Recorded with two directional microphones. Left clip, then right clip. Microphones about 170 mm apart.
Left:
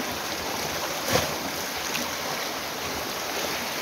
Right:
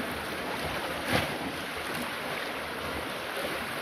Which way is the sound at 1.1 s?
45° left (ahead or behind).